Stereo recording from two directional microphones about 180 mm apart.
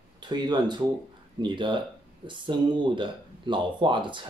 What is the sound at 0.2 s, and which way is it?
Speech, 25° right (ahead or behind).